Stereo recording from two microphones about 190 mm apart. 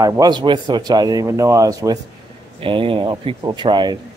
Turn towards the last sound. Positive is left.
turn(degrees=-25)  # may be behind; listen again after turning